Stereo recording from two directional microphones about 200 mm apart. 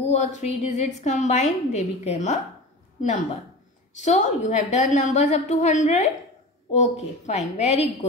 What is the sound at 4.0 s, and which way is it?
A woman's voice, 35° left (ahead or behind).